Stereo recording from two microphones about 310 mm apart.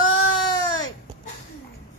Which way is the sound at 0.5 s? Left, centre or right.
Centre.